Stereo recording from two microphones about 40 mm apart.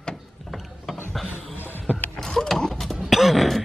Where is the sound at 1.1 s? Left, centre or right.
Centre.